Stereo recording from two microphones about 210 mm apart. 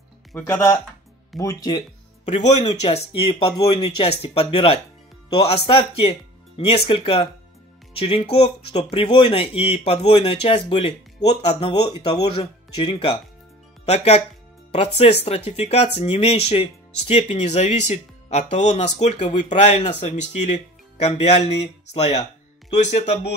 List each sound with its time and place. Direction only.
0.4 s speech: 15° left (ahead or behind)
2.2 s speech: 30° left (ahead or behind)